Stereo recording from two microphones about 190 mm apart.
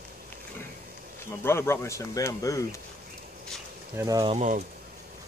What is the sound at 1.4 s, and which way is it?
Speech, 15° left (ahead or behind).